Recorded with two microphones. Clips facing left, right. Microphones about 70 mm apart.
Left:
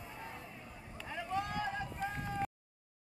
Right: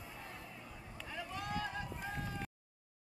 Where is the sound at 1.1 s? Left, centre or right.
Left.